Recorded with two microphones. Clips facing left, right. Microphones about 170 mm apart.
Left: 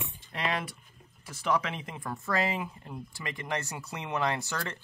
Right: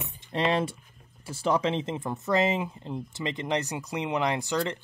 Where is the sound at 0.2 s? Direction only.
25° right (ahead or behind).